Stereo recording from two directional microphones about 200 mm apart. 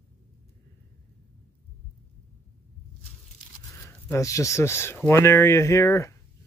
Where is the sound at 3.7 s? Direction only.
15° left (ahead or behind).